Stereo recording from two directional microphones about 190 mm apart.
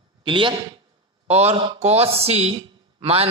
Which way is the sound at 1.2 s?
35° right (ahead or behind).